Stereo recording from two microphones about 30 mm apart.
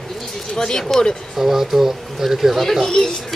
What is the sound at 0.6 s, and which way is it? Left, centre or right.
Speech, left.